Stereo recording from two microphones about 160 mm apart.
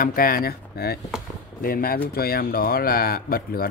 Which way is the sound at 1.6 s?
65° left (ahead or behind).